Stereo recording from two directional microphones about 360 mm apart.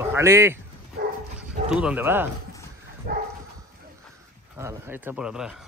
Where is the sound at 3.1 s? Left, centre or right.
Right.